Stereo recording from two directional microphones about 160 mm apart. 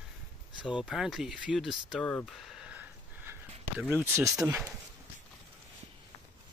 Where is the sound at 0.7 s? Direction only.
5° right (ahead or behind).